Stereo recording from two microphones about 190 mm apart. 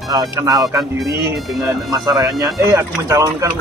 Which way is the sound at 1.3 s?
Centre (ahead or behind).